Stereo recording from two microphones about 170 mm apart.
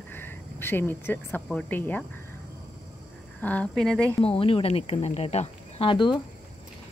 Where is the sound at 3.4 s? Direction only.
10° left (ahead or behind).